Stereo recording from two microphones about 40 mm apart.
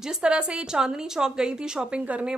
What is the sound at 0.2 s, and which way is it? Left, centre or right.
Speech, right.